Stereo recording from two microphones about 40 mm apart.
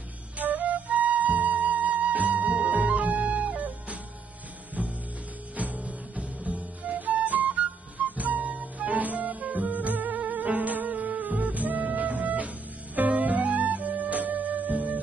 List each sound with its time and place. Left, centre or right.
0.4 s flute: right
2.9 s music: right